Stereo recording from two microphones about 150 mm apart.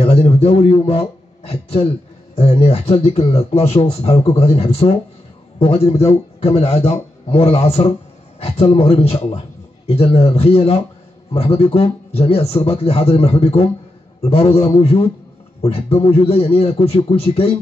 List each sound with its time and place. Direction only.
0.0 s a sound: 40° left (ahead or behind)
1.5 s a man's voice: 40° left (ahead or behind)
15.6 s a man's voice: 40° left (ahead or behind)